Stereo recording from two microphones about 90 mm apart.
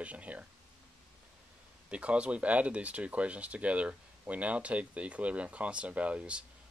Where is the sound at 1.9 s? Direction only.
15° right (ahead or behind).